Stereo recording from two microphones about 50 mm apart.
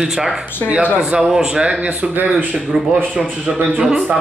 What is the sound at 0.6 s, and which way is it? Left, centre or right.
Speech, right.